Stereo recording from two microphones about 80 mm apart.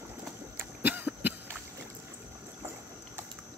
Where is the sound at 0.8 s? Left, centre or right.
Right.